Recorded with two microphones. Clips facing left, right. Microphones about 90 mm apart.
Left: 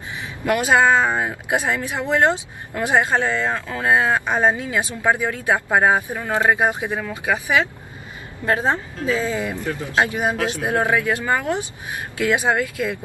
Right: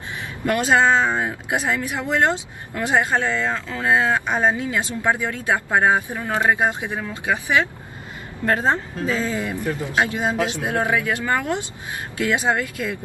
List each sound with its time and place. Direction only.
0.7 s speech: 20° left (ahead or behind)
10.3 s speech: 20° right (ahead or behind)
10.6 s speech: 25° left (ahead or behind)